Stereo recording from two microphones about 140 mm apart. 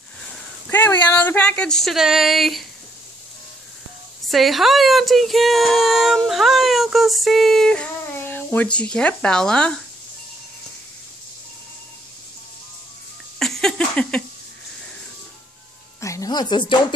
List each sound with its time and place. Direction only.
0.7 s speech: 15° left (ahead or behind)
4.3 s speech: centre (ahead or behind)
13.4 s a sound: 5° left (ahead or behind)
16.0 s music: 25° left (ahead or behind)